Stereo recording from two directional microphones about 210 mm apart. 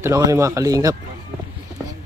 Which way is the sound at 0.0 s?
15° right (ahead or behind).